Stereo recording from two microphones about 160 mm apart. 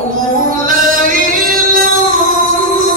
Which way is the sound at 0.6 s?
60° right (ahead or behind).